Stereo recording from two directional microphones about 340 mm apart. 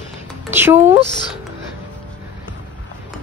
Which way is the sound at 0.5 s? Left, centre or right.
Centre.